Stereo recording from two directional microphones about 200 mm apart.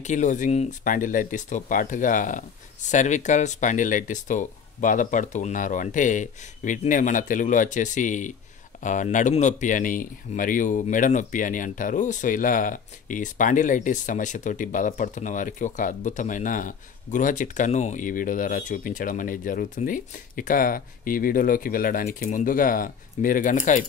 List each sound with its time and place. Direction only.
0.0 s speech: 35° left (ahead or behind)